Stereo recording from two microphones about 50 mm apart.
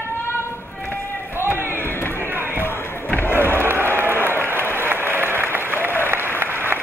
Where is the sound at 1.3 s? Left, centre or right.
Right.